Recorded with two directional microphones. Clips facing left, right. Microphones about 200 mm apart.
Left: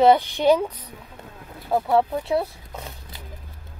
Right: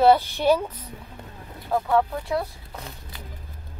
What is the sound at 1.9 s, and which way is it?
Speech, 25° left (ahead or behind).